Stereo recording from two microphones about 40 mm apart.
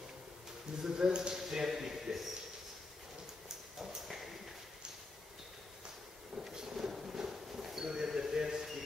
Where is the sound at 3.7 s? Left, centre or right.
Centre.